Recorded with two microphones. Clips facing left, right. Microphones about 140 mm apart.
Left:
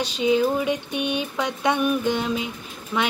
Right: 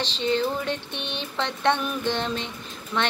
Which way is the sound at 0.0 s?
10° left (ahead or behind).